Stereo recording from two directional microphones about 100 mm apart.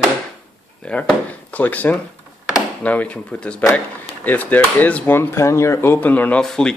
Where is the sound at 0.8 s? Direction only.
10° left (ahead or behind).